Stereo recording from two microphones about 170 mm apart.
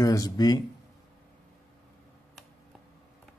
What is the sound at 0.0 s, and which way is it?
Speech, 20° left (ahead or behind).